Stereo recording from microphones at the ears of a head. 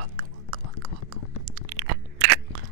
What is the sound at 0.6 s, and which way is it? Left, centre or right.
Whispering, left.